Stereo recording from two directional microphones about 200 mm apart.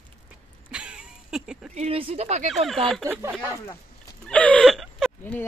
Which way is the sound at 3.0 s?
15° right (ahead or behind).